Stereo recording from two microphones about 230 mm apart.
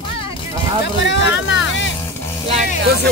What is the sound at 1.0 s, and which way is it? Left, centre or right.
Vehicle, left.